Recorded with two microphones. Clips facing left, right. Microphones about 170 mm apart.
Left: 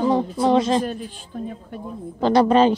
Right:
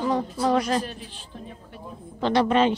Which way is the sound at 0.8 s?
50° left (ahead or behind).